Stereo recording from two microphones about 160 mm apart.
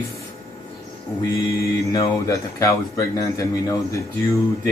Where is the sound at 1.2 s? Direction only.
20° left (ahead or behind).